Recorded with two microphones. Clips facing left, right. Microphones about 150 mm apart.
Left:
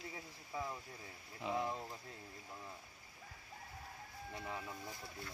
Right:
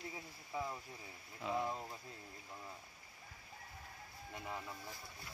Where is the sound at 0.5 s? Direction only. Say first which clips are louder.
Right 1 dB; 5° right (ahead or behind).